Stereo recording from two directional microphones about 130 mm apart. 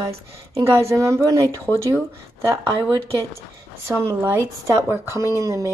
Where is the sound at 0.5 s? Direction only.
20° right (ahead or behind).